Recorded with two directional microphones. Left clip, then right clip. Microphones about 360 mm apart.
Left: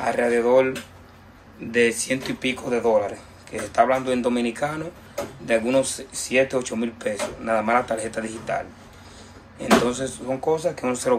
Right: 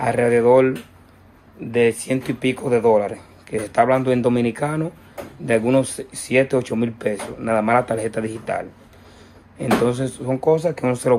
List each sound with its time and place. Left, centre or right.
0.0 s speech: centre